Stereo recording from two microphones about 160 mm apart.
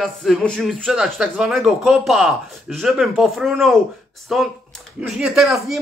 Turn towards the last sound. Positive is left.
turn(degrees=0)  # may be behind; listen again after turning